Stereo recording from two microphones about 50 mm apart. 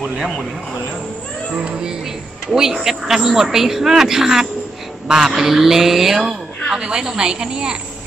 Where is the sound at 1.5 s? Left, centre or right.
Centre.